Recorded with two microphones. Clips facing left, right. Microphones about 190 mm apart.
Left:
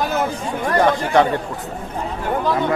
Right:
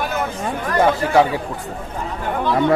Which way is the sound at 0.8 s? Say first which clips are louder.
Right 2 dB; 5° right (ahead or behind).